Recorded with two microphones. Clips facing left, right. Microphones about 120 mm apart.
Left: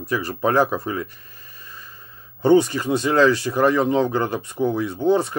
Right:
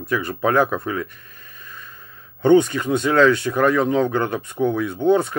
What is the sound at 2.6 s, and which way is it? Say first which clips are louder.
Speech: right 1 dB; 30° left (ahead or behind).